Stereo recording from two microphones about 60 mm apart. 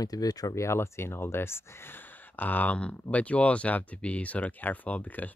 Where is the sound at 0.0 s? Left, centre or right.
Left.